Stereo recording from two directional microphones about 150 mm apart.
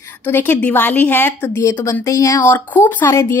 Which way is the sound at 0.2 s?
15° left (ahead or behind).